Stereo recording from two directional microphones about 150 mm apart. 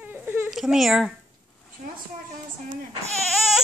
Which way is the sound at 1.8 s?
60° right (ahead or behind).